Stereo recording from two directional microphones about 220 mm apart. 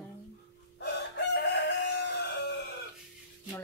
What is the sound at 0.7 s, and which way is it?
Chicken, 50° left (ahead or behind).